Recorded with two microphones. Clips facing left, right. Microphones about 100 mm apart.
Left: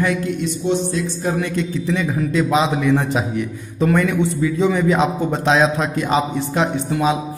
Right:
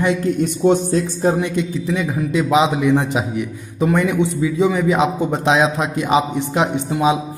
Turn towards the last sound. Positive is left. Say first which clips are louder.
# right 1 dB
turn(degrees=-15)  # may be behind; listen again after turning